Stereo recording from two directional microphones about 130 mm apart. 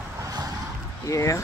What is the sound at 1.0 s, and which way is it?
Speech, 25° left (ahead or behind).